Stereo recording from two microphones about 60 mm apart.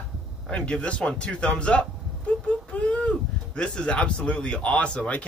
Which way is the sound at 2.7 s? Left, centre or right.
Left.